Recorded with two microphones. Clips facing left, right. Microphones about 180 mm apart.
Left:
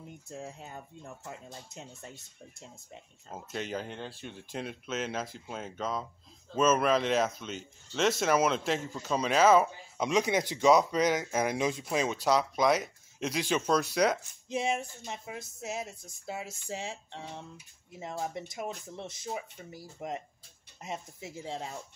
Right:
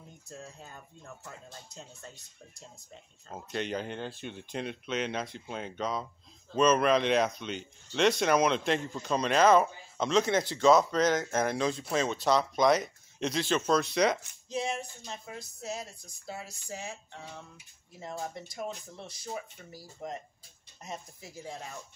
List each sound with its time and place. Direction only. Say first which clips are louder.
0.3 s speech: left 4 dB; 20° left (ahead or behind)
3.3 s speech: right 2 dB; 5° left (ahead or behind)
14.5 s speech: left 2 dB; 25° left (ahead or behind)